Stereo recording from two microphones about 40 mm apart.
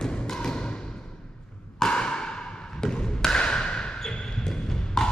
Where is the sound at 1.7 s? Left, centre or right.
Left.